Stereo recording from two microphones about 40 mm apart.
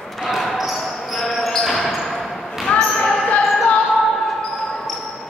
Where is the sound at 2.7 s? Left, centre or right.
Left.